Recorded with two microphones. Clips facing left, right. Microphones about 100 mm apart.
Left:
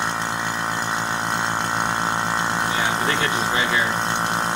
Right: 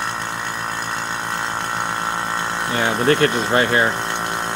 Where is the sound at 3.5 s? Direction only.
55° right (ahead or behind).